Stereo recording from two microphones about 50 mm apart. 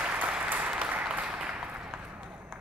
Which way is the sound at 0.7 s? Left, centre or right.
Centre.